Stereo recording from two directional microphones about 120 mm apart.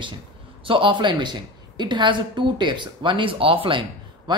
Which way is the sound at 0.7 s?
45° right (ahead or behind).